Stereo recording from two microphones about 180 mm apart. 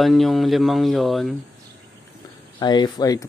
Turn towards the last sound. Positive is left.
turn(degrees=20)  # may be behind; listen again after turning